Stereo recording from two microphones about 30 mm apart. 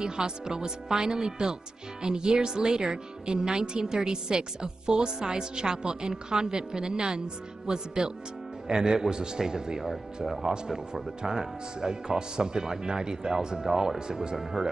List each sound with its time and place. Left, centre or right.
0.0 s speech: right
9.8 s speech: centre
11.2 s speech: right
14.3 s speech: centre